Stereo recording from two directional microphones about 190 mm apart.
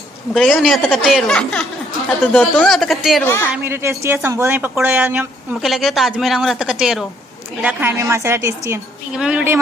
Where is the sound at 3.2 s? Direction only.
10° left (ahead or behind).